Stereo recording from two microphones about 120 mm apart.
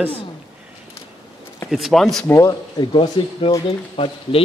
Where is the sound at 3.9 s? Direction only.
55° left (ahead or behind).